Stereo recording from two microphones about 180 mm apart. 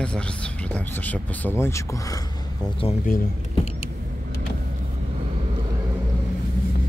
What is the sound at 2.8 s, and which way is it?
Speech, 30° left (ahead or behind).